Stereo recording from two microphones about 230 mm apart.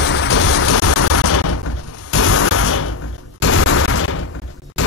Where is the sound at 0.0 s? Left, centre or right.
Left.